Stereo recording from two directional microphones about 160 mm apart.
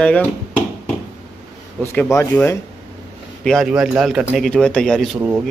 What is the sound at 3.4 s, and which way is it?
Speech, centre (ahead or behind).